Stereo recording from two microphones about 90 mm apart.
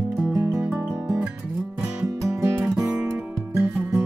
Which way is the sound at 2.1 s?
35° right (ahead or behind).